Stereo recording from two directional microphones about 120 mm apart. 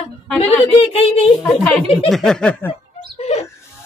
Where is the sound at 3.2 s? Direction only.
60° left (ahead or behind).